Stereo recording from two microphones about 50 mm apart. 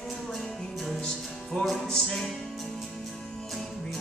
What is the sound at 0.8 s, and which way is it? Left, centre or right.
Music, centre.